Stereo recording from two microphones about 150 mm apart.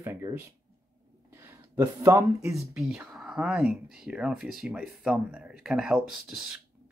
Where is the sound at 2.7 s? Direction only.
Centre (ahead or behind).